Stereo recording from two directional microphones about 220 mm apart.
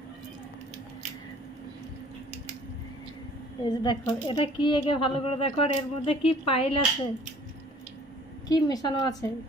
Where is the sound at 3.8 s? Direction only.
20° left (ahead or behind).